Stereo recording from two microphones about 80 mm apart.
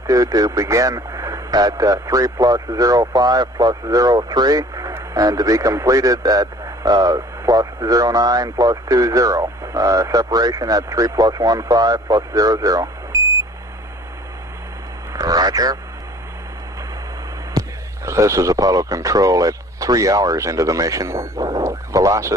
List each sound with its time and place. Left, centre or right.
0.0 s a man's voice: right
15.1 s speech: right
18.0 s a man's voice: right